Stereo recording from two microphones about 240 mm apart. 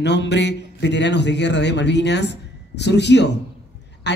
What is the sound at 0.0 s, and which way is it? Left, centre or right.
A man's voice, left.